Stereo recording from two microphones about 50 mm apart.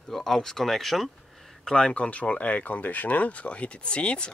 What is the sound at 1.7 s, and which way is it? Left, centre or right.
Speech, centre.